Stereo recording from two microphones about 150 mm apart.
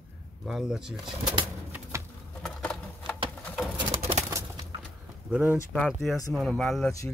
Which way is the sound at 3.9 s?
40° right (ahead or behind).